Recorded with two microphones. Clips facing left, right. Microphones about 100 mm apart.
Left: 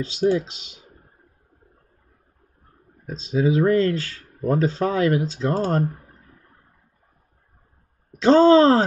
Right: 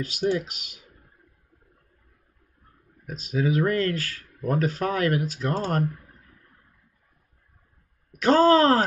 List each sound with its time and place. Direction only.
0.0 s speech: 25° left (ahead or behind)
3.1 s speech: 25° left (ahead or behind)
5.7 s clicking: 30° left (ahead or behind)
8.1 s speech: 25° left (ahead or behind)